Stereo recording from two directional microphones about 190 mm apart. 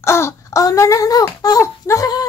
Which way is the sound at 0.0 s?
15° left (ahead or behind).